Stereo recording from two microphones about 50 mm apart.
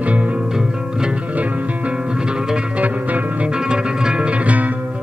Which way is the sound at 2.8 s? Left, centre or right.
Right.